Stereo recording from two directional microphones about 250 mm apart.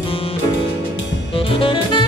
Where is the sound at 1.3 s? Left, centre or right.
Left.